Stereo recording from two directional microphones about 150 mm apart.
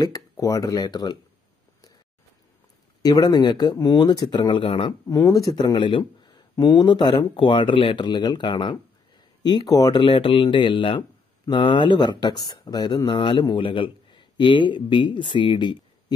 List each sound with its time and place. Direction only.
0.0 s speech: 25° left (ahead or behind)
3.0 s speech: 25° left (ahead or behind)
5.0 s speech: 25° left (ahead or behind)